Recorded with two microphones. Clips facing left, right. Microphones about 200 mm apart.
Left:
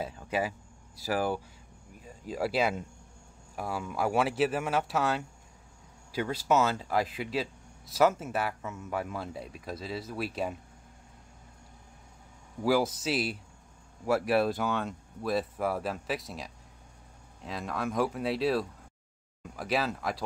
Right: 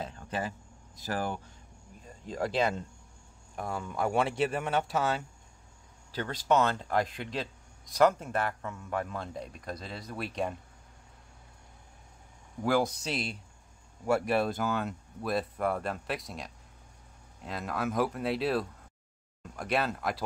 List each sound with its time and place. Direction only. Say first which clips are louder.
0.0 s a sound: left 4 dB; 10° left (ahead or behind)
2.0 s speech: left 1 dB; 5° left (ahead or behind)
12.6 s speech: left 1 dB; 5° left (ahead or behind)